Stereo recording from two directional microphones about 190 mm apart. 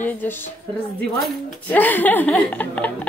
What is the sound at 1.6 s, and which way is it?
A woman's voice, 10° left (ahead or behind).